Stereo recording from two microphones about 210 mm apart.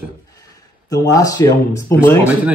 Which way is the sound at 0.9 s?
15° left (ahead or behind).